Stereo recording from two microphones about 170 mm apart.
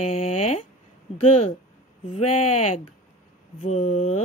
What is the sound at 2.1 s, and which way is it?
Music, 40° left (ahead or behind).